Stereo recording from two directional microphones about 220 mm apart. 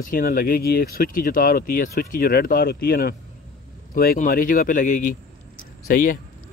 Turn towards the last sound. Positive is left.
turn(degrees=40)  # may be behind; listen again after turning